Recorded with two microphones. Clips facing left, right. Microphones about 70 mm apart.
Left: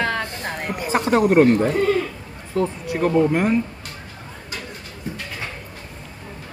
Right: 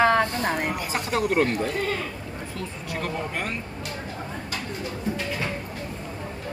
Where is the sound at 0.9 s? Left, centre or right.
Left.